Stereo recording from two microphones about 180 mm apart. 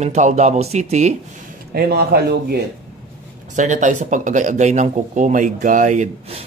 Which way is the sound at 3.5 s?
45° right (ahead or behind).